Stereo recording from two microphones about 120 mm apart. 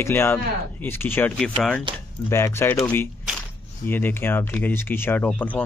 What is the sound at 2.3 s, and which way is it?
Speech, 20° left (ahead or behind).